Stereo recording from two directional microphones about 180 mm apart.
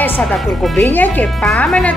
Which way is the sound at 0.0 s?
5° left (ahead or behind).